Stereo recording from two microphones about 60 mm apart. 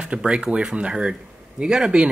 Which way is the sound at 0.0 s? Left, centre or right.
Centre.